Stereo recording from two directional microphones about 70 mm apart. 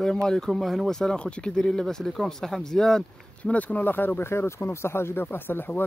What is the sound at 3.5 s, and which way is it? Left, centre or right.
Speech, left.